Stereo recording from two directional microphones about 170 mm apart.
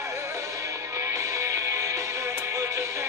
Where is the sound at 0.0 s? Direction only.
15° right (ahead or behind).